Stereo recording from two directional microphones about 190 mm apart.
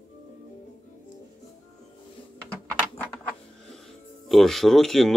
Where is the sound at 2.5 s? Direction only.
5° left (ahead or behind).